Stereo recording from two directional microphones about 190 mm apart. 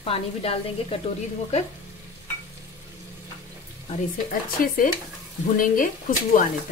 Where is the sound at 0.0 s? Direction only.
30° left (ahead or behind).